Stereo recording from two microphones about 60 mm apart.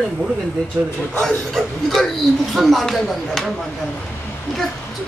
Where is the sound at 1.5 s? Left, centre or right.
Centre.